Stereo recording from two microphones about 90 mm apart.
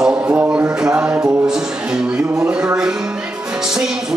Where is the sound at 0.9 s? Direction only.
20° right (ahead or behind).